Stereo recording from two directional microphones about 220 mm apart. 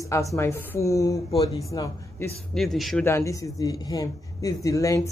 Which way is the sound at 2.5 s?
Centre (ahead or behind).